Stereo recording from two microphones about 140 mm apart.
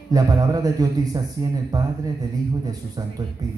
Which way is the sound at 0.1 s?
25° right (ahead or behind).